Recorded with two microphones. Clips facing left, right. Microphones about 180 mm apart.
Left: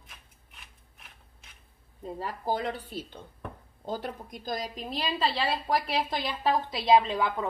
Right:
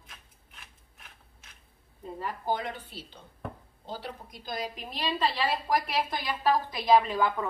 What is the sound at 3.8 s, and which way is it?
Speech, 45° left (ahead or behind).